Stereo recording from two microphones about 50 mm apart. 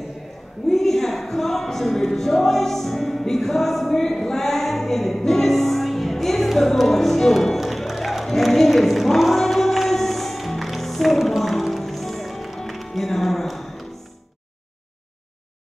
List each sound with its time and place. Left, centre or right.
0.7 s music: centre